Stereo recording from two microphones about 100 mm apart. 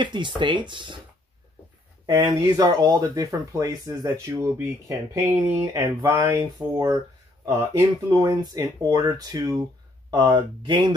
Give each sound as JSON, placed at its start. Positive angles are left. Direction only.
{"t": 0.0, "sound": "speech", "side_deg": -50}
{"t": 2.0, "sound": "speech", "side_deg": -45}
{"t": 10.3, "sound": "speech", "side_deg": -50}